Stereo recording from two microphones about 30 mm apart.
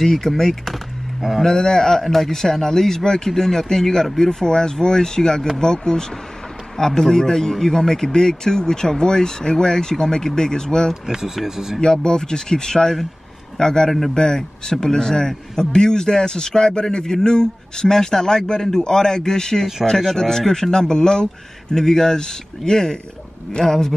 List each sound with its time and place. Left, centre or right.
0.0 s a man's voice: centre
1.4 s a man's voice: centre
11.1 s speech: centre
11.8 s a man's voice: left
20.8 s speech: left